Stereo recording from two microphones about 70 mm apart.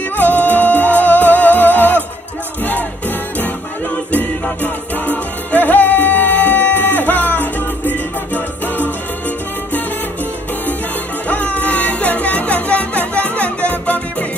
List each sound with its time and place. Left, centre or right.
0.2 s music: left
5.0 s music: left
11.2 s music: left